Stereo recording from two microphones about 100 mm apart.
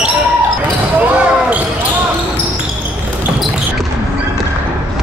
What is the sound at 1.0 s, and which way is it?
Basketball bounce, 15° right (ahead or behind).